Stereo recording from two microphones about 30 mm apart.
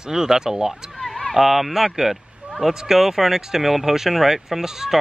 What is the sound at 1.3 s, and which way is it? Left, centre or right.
Speech, centre.